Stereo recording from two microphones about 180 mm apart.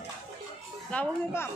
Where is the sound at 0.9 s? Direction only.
10° left (ahead or behind).